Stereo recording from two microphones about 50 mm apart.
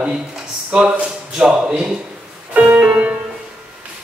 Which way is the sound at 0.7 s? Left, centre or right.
Centre.